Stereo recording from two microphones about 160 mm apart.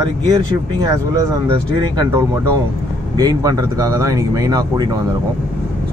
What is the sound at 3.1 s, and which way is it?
Speech, 25° right (ahead or behind).